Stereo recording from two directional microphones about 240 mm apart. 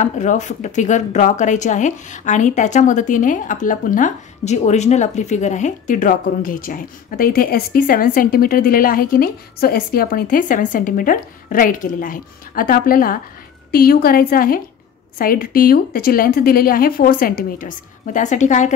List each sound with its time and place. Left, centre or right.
0.0 s a woman's voice: left